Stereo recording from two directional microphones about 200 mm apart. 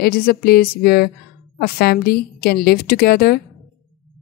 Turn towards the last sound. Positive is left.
turn(degrees=50)  # may be behind; listen again after turning